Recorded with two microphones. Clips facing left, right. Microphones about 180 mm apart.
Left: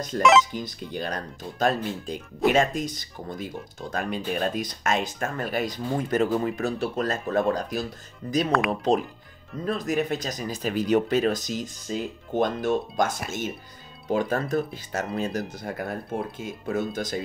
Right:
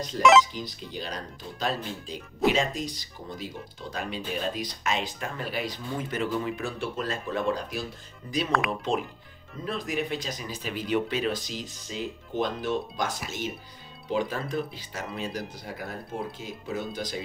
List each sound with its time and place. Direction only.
0.2 s speech: centre (ahead or behind)
0.5 s speech: 50° left (ahead or behind)
8.5 s speech: centre (ahead or behind)
9.7 s speech: 45° left (ahead or behind)